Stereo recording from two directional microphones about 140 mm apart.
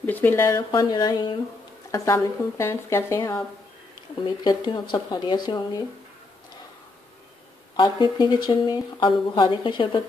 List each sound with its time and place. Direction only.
0.0 s speech: 15° left (ahead or behind)
0.7 s a woman's voice: 30° left (ahead or behind)
4.5 s speech: 30° left (ahead or behind)
7.7 s speech: 35° left (ahead or behind)